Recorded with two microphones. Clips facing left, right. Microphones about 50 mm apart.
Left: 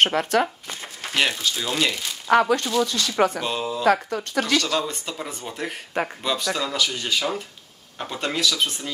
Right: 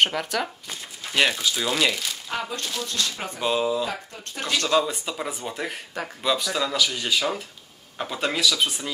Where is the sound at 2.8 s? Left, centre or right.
Left.